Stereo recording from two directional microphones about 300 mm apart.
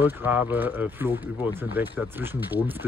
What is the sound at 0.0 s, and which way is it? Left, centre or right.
Speech, centre.